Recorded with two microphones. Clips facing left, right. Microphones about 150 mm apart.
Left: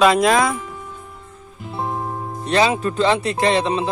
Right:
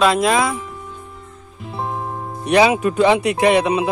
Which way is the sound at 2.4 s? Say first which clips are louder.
Right 4 dB; 15° right (ahead or behind).